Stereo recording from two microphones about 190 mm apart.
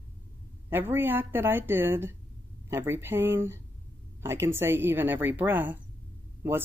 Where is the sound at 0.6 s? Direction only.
10° right (ahead or behind).